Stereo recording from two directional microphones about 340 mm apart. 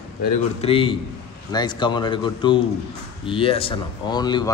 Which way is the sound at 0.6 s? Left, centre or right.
Centre.